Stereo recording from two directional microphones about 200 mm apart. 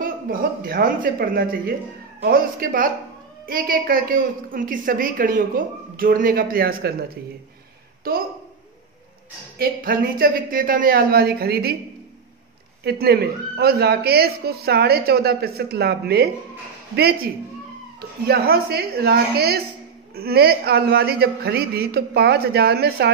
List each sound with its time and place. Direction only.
0.0 s a woman's voice: 45° right (ahead or behind)
9.6 s a woman's voice: 45° right (ahead or behind)
12.8 s a woman's voice: 50° right (ahead or behind)